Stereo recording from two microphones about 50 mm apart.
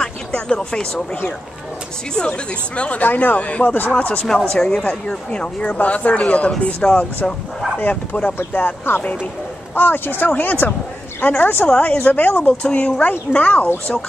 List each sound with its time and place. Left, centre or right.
0.0 s a sound: centre
2.1 s speech: left
3.0 s speech: left
3.3 s speech: left
4.5 s speech: centre
5.7 s speech: left
7.8 s speech: left
8.5 s speech: left
11.6 s speech: left
12.0 s speech: left
12.6 s speech: left